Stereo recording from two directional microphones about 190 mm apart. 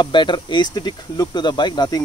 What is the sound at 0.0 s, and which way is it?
Speech, 25° left (ahead or behind).